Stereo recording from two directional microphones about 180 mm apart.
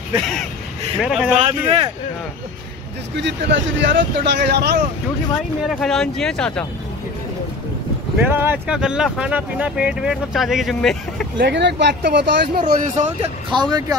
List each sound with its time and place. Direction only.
1.0 s speech: 5° right (ahead or behind)
3.2 s speech: 80° right
5.8 s speech: 5° left (ahead or behind)
8.2 s speech: 10° right (ahead or behind)
11.3 s speech: 75° right (ahead or behind); by 12.8 s 60° right (ahead or behind)
12.9 s speech: 40° right (ahead or behind)
13.5 s speech: 25° right (ahead or behind)